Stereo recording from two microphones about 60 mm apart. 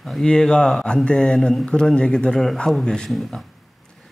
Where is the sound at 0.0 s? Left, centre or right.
Centre.